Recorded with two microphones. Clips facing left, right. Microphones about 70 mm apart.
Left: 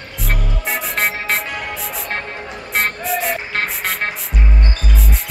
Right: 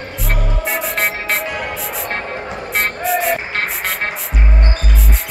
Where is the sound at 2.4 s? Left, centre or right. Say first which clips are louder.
Right 5 dB; right.